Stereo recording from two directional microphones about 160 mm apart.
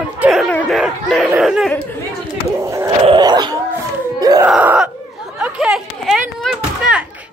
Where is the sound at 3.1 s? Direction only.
25° right (ahead or behind).